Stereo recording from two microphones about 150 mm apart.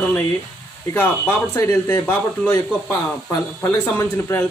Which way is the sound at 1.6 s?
25° left (ahead or behind).